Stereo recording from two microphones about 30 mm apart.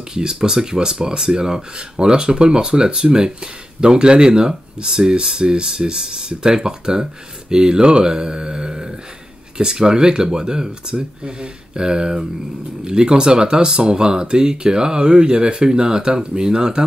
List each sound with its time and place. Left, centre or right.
0.1 s speech: right